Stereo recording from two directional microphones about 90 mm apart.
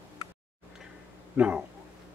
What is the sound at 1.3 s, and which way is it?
Speech, 15° right (ahead or behind).